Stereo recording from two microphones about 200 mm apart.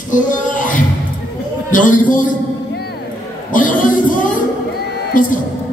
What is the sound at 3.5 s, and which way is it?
A man's voice, 40° left (ahead or behind).